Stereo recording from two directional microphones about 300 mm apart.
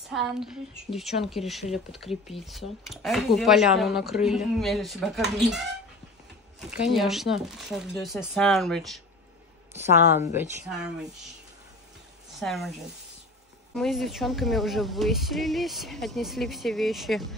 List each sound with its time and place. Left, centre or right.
0.1 s a woman's voice: centre
6.7 s a woman's voice: centre
12.4 s a woman's voice: centre
13.7 s a woman's voice: centre